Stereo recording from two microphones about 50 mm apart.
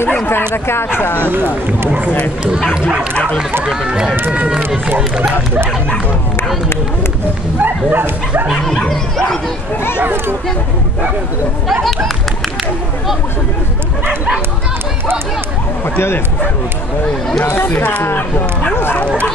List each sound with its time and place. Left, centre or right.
1.3 s speech: right
3.6 s speech: centre
7.5 s speech: right
8.6 s speech: centre
17.6 s speech: left